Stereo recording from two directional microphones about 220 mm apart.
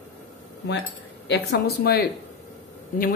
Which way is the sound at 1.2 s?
50° left (ahead or behind).